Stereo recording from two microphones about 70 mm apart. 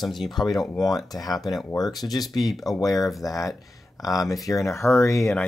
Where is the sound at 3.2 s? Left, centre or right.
Left.